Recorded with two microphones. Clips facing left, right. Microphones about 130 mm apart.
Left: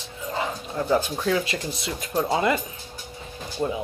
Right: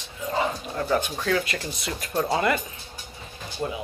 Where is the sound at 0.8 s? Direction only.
15° left (ahead or behind).